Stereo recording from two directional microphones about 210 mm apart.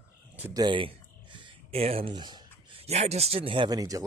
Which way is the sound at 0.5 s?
20° right (ahead or behind).